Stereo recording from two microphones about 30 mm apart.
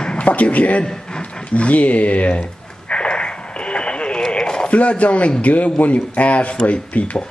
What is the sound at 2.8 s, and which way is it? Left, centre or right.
Radio, left.